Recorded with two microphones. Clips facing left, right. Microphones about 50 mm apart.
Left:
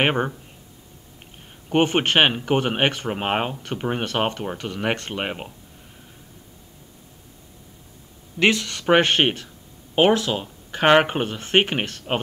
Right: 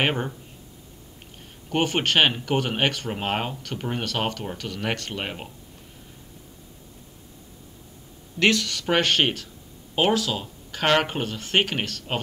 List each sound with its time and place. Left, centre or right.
0.0 s speech: left
1.7 s speech: left
8.4 s speech: left